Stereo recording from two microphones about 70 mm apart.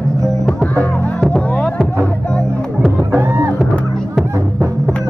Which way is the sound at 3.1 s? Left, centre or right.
Right.